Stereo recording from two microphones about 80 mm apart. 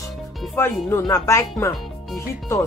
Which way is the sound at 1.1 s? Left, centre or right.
Left.